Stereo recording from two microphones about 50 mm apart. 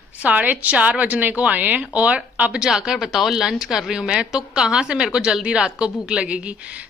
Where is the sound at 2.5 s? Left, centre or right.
Centre.